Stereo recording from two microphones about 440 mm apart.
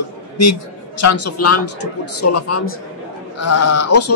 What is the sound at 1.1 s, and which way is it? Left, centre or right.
Speech, left.